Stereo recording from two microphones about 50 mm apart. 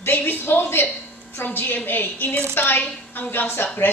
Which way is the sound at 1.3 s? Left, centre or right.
Left.